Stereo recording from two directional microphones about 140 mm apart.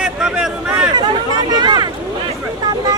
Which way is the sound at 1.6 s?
30° right (ahead or behind).